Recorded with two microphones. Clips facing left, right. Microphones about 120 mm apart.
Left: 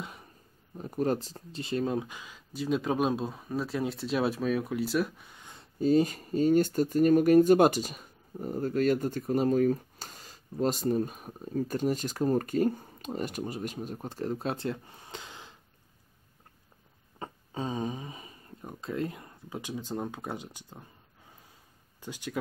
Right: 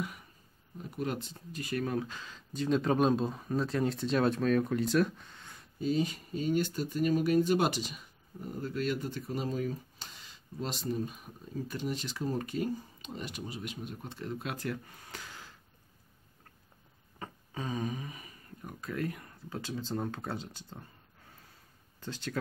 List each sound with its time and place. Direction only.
0.0 s a sound: 30° left (ahead or behind)
0.7 s speech: 40° left (ahead or behind); by 5.5 s 10° left (ahead or behind)
5.8 s speech: 45° left (ahead or behind); by 15.6 s 20° left (ahead or behind)
17.2 s speech: 25° left (ahead or behind)
22.0 s speech: 15° left (ahead or behind)